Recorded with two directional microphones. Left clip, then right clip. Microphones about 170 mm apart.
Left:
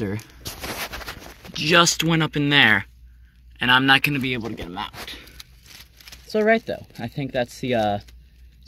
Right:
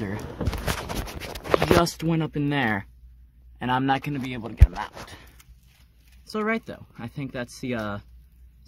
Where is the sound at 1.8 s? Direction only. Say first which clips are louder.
Left 6 dB; 20° right (ahead or behind).